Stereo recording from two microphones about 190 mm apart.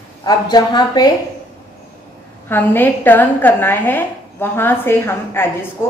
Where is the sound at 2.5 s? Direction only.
10° left (ahead or behind).